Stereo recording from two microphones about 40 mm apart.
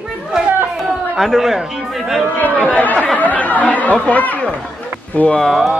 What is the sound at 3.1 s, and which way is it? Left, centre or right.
Chatter, left.